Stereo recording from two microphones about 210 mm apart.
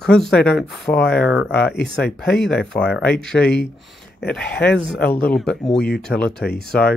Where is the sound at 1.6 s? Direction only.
50° left (ahead or behind).